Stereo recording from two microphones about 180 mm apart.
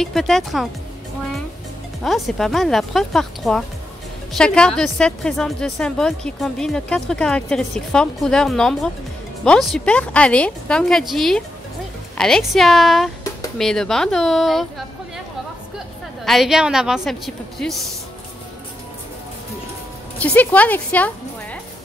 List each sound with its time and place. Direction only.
0.0 s a woman's voice: centre (ahead or behind)
2.0 s a woman's voice: centre (ahead or behind)
16.3 s a woman's voice: centre (ahead or behind)
20.2 s a woman's voice: 10° left (ahead or behind)